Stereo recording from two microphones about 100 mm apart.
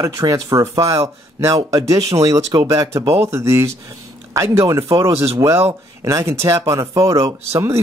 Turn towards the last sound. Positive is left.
turn(degrees=-30)  # may be behind; listen again after turning